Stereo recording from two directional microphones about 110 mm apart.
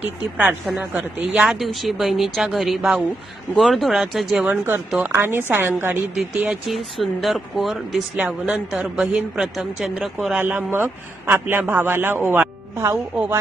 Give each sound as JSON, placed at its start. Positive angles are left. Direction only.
{"t": 0.0, "sound": "speech", "side_deg": -15}
{"t": 4.5, "sound": "a man's voice", "side_deg": -20}
{"t": 6.1, "sound": "speech", "side_deg": -5}
{"t": 10.3, "sound": "a man's voice", "side_deg": -15}